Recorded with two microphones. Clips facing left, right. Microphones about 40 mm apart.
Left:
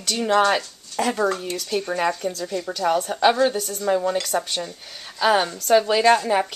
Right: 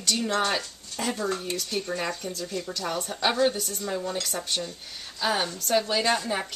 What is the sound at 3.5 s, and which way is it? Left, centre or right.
Speech, left.